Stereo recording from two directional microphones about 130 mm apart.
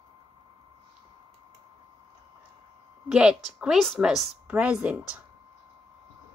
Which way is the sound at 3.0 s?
5° right (ahead or behind).